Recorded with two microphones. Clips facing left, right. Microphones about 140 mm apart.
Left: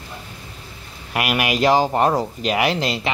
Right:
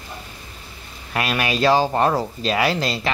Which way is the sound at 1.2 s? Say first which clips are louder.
Left 1 dB; 15° left (ahead or behind).